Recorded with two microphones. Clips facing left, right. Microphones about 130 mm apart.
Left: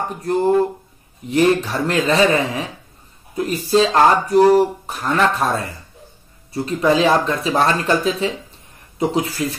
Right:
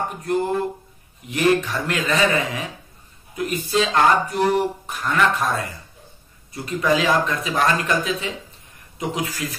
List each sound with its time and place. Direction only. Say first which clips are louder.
1.3 s speech: left 3 dB; 30° left (ahead or behind)